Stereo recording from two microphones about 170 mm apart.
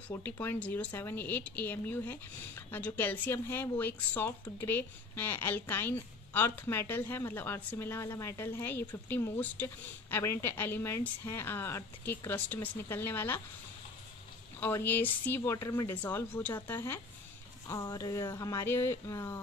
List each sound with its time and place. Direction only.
0.1 s a woman's voice: 15° left (ahead or behind)
14.6 s a woman's voice: 15° left (ahead or behind)